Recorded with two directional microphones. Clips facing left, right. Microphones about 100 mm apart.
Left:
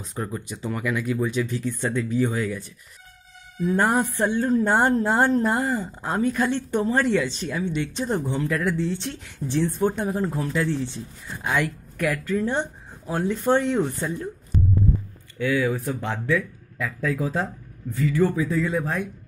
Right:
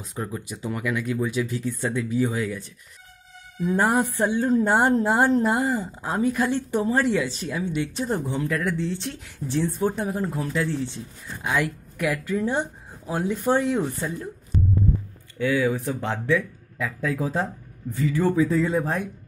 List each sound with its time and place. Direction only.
0.0 s a woman's voice: 5° right (ahead or behind)
3.6 s a woman's voice: 10° right (ahead or behind)
15.3 s speech: 25° right (ahead or behind)